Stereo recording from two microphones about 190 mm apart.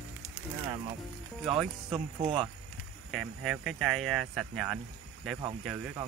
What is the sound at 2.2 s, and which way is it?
Speech, 30° right (ahead or behind).